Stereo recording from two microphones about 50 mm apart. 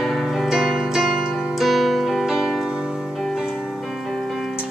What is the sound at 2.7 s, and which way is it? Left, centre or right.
Music, centre.